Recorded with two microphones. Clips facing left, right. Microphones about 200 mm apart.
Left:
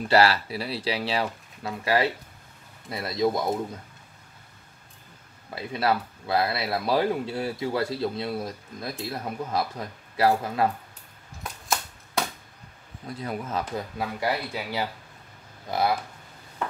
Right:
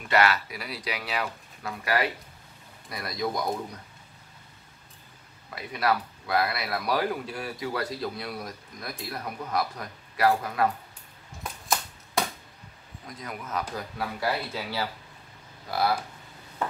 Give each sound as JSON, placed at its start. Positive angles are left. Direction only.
{"t": 0.0, "sound": "speech", "side_deg": 30}
{"t": 5.5, "sound": "speech", "side_deg": 25}
{"t": 11.4, "sound": "a sound", "side_deg": 0}
{"t": 13.0, "sound": "speech", "side_deg": 30}